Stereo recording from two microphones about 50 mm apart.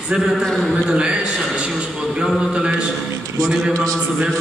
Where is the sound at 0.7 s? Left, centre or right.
Centre.